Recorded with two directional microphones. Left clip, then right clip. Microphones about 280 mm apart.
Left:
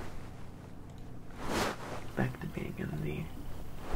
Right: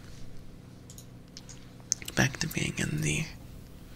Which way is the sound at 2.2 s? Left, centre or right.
Right.